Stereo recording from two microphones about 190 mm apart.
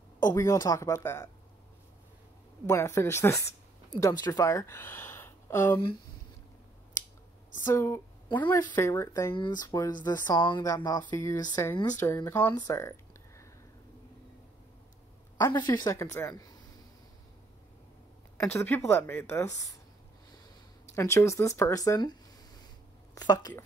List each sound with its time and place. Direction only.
0.2 s speech: 20° left (ahead or behind)
2.6 s speech: 15° left (ahead or behind)
7.6 s speech: 15° left (ahead or behind)
15.3 s speech: 20° left (ahead or behind)
18.4 s speech: 10° left (ahead or behind)
20.9 s speech: 15° left (ahead or behind)